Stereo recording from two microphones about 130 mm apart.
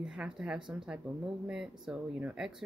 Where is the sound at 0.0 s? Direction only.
5° right (ahead or behind).